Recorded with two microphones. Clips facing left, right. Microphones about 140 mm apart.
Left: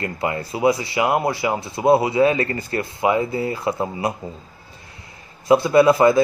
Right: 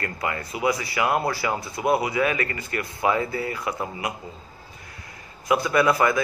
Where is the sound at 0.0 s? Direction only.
25° left (ahead or behind).